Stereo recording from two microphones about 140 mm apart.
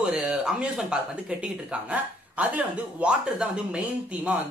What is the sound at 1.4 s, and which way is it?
Speech, 10° right (ahead or behind).